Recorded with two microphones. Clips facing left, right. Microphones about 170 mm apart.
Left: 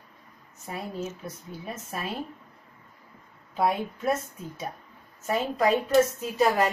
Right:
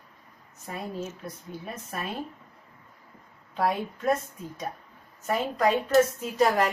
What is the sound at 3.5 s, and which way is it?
Speech, 5° left (ahead or behind).